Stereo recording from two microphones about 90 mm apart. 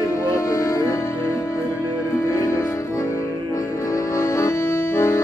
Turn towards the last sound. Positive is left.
turn(degrees=30)  # may be behind; listen again after turning